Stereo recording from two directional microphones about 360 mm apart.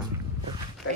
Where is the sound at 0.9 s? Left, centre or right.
Left.